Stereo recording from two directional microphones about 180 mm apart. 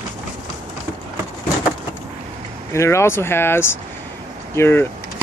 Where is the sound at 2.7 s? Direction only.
15° left (ahead or behind).